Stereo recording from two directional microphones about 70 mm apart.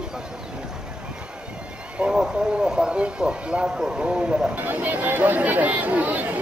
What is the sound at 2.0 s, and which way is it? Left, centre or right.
Speech, centre.